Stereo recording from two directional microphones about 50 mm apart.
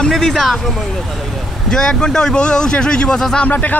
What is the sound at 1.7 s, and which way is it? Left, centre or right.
Speech, centre.